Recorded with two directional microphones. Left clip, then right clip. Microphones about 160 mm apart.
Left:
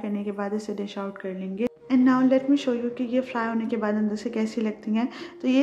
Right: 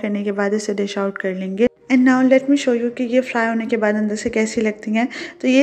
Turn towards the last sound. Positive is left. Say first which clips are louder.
# right 7 dB
turn(degrees=-20)  # may be behind; listen again after turning